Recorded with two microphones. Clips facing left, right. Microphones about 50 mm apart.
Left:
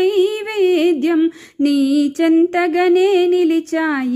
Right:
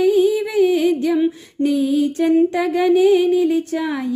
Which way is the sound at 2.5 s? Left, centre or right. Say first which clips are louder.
Left 2 dB; left.